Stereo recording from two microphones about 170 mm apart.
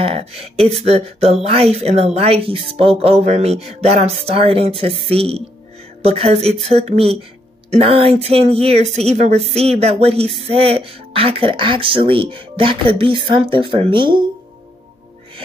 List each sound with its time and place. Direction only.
0.0 s a woman's voice: 35° right (ahead or behind)